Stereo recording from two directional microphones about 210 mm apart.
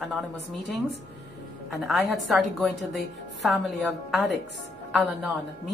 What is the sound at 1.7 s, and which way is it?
A woman's voice, centre (ahead or behind).